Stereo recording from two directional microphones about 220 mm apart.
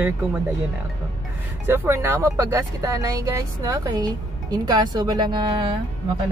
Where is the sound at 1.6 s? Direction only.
10° right (ahead or behind).